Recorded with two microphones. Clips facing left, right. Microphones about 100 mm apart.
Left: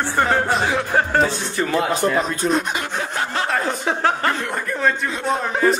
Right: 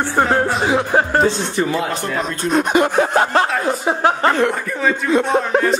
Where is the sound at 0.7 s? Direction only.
20° right (ahead or behind).